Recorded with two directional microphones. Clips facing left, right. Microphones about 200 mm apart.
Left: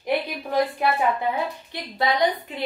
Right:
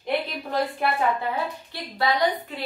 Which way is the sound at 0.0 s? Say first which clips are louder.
Left 2 dB; 15° left (ahead or behind).